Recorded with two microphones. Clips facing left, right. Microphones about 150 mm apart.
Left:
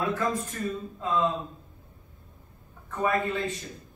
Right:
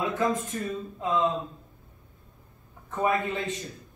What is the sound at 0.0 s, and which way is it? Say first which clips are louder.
A man's voice: right 1 dB; 20° right (ahead or behind).